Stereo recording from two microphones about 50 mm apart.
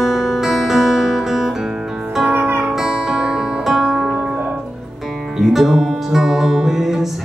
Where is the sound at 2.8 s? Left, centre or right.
Centre.